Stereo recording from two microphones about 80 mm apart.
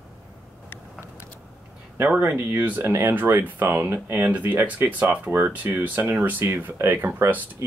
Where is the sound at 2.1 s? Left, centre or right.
Right.